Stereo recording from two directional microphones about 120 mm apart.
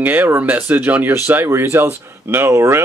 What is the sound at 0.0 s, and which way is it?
Speech, 15° right (ahead or behind).